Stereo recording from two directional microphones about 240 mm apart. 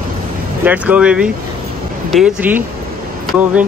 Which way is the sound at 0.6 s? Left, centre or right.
Centre.